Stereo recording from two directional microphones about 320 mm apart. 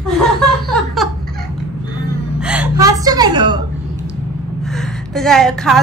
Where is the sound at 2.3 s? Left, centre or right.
Centre.